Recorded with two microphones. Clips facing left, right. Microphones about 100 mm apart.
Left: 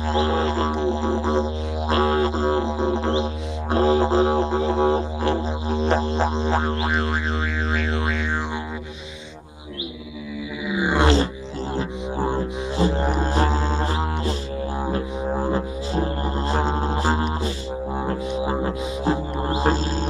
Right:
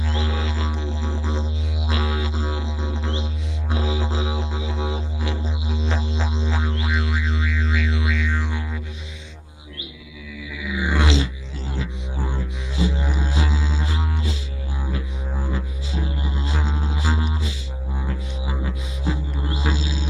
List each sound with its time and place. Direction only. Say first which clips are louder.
0.0 s music: left 7 dB; 40° left (ahead or behind)
10.7 s music: left 3 dB; 30° left (ahead or behind)
11.7 s music: left 5 dB; 45° left (ahead or behind)